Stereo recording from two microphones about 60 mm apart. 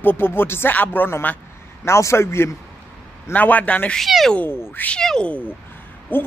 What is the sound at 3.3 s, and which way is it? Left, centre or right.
Speech, left.